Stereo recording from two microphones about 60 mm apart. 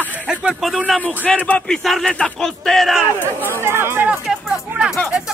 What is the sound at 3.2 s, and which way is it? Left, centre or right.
Speech, left.